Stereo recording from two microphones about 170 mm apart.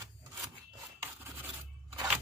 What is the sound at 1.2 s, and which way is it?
Filing, 10° right (ahead or behind).